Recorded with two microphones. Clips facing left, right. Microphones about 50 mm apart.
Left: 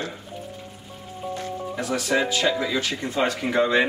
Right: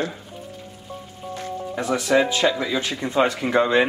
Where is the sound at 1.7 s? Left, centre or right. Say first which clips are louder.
Right 4 dB; right.